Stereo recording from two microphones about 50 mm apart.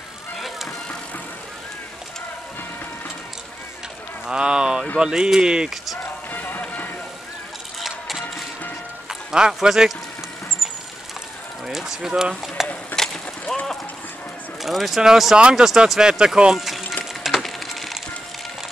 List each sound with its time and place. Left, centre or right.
4.3 s speech: centre
6.3 s run: left
7.8 s music: centre
9.3 s speech: centre
10.6 s vehicle: centre
11.6 s speech: centre
12.6 s clip-clop: centre
12.9 s a sound: centre
14.6 s speech: centre
15.3 s speech: centre
17.0 s a sound: centre